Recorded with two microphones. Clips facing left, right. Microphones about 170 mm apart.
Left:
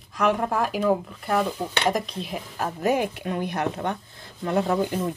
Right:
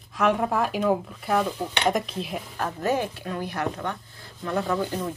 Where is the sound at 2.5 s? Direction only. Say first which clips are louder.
Left 2 dB; 15° left (ahead or behind).